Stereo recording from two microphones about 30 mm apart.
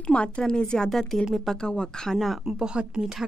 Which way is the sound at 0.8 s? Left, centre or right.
Centre.